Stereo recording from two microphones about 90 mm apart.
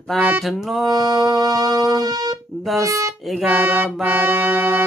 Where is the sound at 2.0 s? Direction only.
45° right (ahead or behind).